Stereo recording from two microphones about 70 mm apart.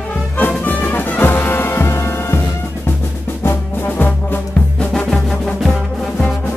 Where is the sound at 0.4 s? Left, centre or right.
Left.